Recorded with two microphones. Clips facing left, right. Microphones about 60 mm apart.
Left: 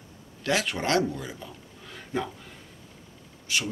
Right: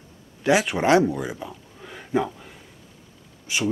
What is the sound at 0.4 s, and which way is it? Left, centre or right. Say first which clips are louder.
Speech: right 7 dB; centre.